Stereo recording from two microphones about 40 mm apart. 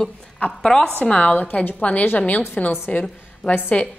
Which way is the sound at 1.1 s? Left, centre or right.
Left.